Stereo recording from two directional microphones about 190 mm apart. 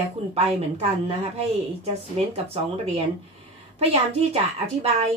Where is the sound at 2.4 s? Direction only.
35° right (ahead or behind).